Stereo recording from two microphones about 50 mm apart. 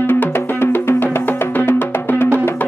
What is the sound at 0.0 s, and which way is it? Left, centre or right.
Music, left.